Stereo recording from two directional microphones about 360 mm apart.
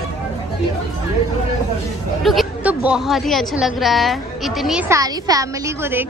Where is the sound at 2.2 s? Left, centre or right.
Centre.